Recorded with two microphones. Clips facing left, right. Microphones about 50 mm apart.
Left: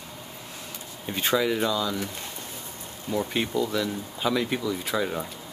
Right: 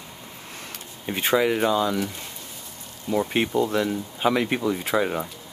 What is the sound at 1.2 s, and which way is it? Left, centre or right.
Speech, right.